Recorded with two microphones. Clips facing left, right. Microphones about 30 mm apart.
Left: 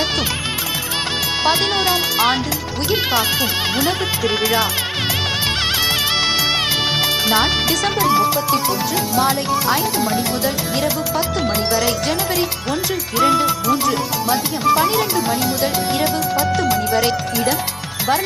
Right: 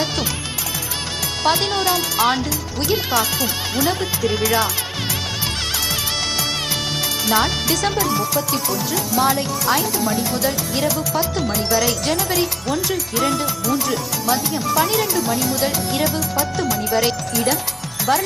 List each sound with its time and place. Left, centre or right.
1.4 s speech: centre
3.7 s speech: left
7.2 s speech: centre
13.2 s speech: centre
14.8 s speech: centre
16.9 s speech: centre